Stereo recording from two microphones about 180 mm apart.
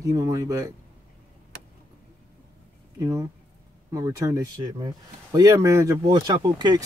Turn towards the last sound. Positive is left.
turn(degrees=-25)  # may be behind; listen again after turning